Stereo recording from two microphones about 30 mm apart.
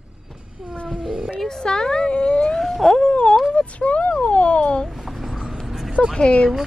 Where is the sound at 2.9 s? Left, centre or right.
Left.